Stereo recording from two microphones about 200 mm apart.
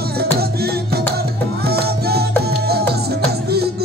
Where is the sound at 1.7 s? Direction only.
50° right (ahead or behind).